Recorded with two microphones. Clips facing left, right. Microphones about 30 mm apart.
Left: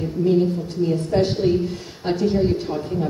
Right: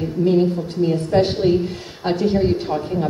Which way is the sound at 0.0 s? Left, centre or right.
Right.